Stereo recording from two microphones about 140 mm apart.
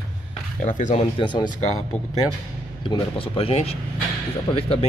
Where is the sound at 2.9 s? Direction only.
40° left (ahead or behind).